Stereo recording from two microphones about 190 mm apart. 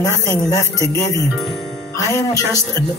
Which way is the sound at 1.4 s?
Centre (ahead or behind).